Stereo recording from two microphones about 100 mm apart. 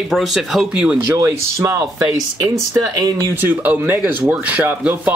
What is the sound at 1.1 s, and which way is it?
Speech, 30° right (ahead or behind).